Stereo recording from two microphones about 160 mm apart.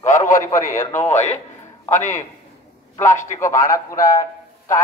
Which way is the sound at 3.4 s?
20° left (ahead or behind).